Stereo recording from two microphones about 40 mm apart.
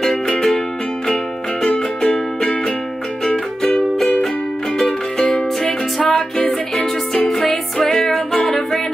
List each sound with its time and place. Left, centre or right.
1.7 s music: left
3.3 s music: left
5.3 s music: centre